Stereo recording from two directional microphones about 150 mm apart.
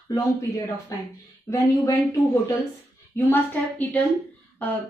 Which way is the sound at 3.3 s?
10° left (ahead or behind).